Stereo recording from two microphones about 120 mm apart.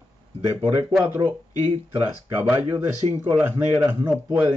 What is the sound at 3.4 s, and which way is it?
Speech, 20° right (ahead or behind).